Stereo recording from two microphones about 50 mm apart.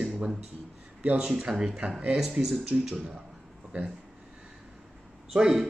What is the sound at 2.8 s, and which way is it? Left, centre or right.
Speech, centre.